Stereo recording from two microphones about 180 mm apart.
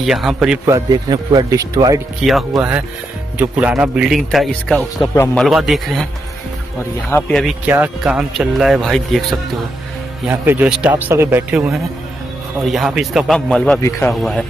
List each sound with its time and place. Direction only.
0.0 s speech: centre (ahead or behind)
0.7 s speech: 20° right (ahead or behind); by 5.0 s 5° left (ahead or behind)
5.1 s speech: 15° left (ahead or behind)
5.4 s speech: centre (ahead or behind)
7.1 s speech: 10° left (ahead or behind)
10.2 s speech: 10° right (ahead or behind)
13.8 s speech: 15° left (ahead or behind)